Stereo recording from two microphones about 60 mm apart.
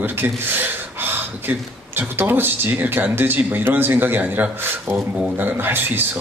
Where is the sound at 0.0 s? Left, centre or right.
Right.